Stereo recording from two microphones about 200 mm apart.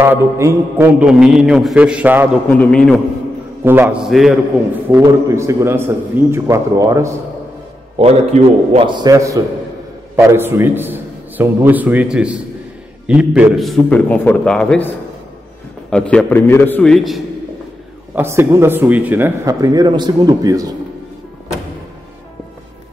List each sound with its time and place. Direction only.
0.0 s a man's voice: 10° right (ahead or behind)
2.6 s a man's voice: 5° left (ahead or behind)
3.6 s a man's voice: 10° right (ahead or behind)
4.9 s a man's voice: 15° right (ahead or behind)
8.0 s a man's voice: 30° right (ahead or behind); by 14.9 s 5° left (ahead or behind)
15.9 s a man's voice: 5° left (ahead or behind)
18.1 s a man's voice: 10° right (ahead or behind)